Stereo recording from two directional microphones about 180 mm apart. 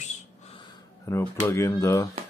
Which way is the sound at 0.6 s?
20° left (ahead or behind).